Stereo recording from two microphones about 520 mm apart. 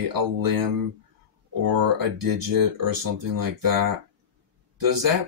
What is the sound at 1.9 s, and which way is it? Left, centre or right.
Speech, right.